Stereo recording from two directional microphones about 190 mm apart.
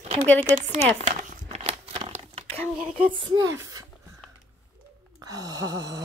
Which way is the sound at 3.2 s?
20° right (ahead or behind).